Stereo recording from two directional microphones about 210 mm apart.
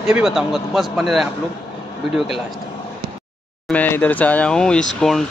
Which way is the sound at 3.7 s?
10° left (ahead or behind).